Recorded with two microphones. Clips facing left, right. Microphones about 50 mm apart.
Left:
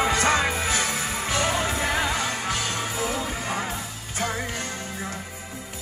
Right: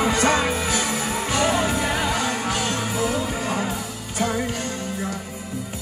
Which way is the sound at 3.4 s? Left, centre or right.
Left.